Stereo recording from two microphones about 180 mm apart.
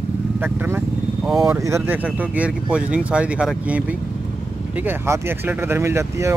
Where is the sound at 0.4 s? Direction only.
10° right (ahead or behind).